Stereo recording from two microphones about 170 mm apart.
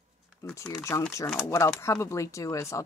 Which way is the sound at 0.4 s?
15° left (ahead or behind).